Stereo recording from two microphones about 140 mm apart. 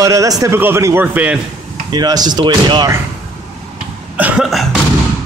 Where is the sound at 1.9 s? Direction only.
30° right (ahead or behind).